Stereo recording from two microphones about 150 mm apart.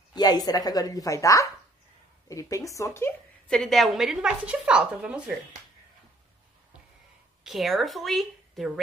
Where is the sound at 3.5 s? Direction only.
Centre (ahead or behind).